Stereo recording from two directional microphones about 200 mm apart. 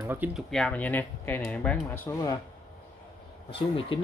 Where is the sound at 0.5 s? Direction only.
5° left (ahead or behind).